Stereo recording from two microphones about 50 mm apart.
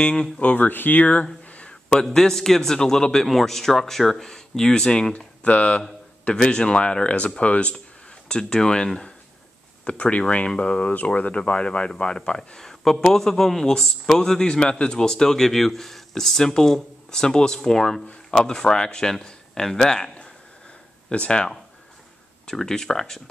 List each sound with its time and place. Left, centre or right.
0.1 s speech: left
1.5 s a sound: left
2.0 s speech: centre
5.1 s speech: left
6.2 s speech: centre
8.3 s speech: centre
21.1 s speech: left
22.5 s speech: centre